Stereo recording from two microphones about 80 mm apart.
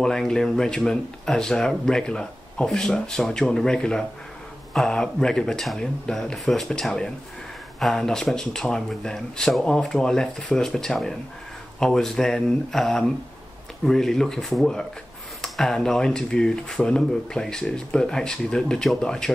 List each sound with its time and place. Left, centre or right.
0.0 s speech: centre